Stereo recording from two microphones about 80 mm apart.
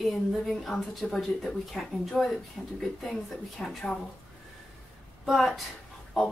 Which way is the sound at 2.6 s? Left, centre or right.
Centre.